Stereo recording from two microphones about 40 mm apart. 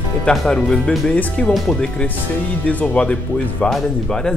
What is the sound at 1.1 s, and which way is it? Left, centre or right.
Speech, left.